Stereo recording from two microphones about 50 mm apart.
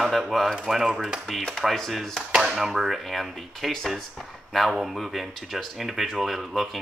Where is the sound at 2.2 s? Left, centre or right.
Centre.